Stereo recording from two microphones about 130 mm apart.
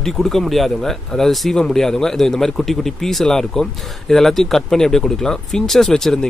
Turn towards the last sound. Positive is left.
turn(degrees=5)  # may be behind; listen again after turning